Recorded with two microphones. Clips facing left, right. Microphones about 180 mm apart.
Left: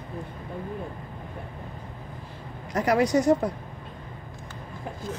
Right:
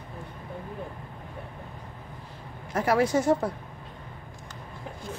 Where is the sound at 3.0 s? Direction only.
15° left (ahead or behind).